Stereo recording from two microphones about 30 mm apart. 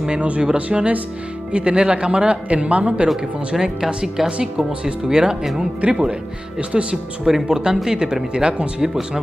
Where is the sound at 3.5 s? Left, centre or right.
Centre.